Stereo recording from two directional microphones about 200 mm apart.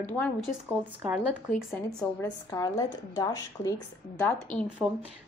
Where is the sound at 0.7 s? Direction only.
10° right (ahead or behind).